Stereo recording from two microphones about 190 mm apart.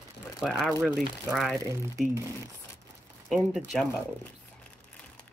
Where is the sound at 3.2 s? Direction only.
Centre (ahead or behind).